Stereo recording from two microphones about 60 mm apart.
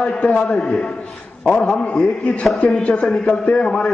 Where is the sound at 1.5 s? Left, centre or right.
Centre.